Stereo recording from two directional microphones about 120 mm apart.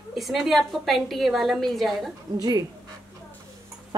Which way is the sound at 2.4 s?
35° right (ahead or behind).